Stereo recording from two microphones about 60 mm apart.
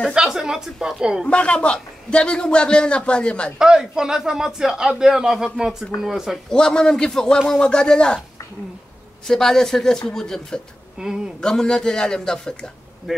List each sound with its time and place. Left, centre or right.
0.1 s a man's voice: centre
1.2 s a man's voice: centre
3.5 s a man's voice: centre
6.5 s a man's voice: centre
9.3 s a man's voice: centre
11.0 s a man's voice: centre
11.4 s a man's voice: centre